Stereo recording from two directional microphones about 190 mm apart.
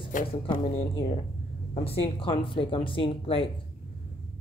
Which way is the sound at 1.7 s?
30° left (ahead or behind).